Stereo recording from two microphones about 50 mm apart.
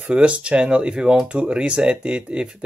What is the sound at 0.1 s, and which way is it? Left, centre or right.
Speech, right.